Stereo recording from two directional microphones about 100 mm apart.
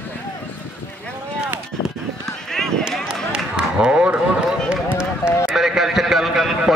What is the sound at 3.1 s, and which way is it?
Run, 10° right (ahead or behind).